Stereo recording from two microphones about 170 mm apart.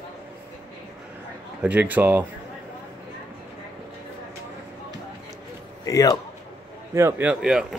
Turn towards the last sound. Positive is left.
turn(degrees=-5)  # may be behind; listen again after turning